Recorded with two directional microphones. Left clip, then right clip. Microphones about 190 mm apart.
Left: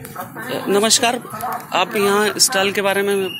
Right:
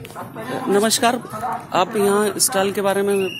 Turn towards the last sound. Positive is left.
turn(degrees=-25)  # may be behind; listen again after turning